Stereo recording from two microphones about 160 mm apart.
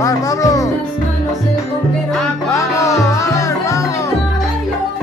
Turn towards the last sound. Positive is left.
turn(degrees=20)  # may be behind; listen again after turning